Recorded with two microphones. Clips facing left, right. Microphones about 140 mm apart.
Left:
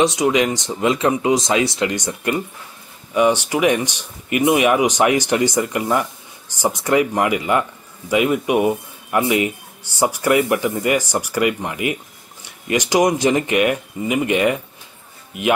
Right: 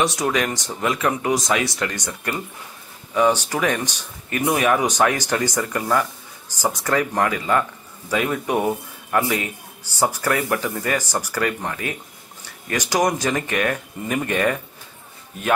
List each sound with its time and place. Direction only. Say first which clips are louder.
0.0 s a man's voice: left 5 dB; 15° left (ahead or behind)